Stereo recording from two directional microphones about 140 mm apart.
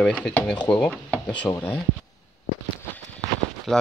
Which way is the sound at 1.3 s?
20° left (ahead or behind).